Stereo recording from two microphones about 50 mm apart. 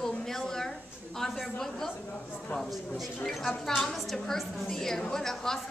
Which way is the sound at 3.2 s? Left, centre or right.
Centre.